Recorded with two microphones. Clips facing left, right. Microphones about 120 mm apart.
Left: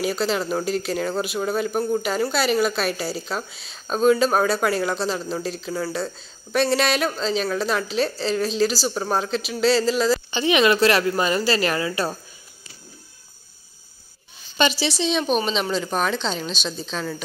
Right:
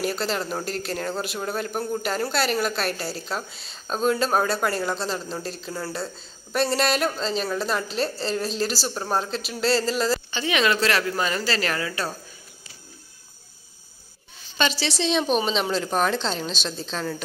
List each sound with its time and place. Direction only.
0.0 s speech: centre (ahead or behind)
10.3 s speech: 20° left (ahead or behind)
14.6 s speech: 5° left (ahead or behind)